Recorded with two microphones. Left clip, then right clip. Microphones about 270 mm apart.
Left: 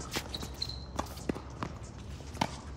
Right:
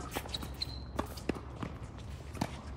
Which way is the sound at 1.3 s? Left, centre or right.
Right.